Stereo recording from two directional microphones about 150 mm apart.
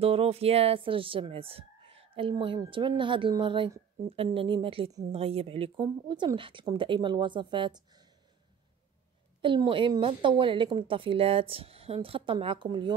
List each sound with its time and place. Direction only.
0.0 s speech: 40° right (ahead or behind)
5.8 s speech: 30° right (ahead or behind)
9.7 s speech: 35° right (ahead or behind)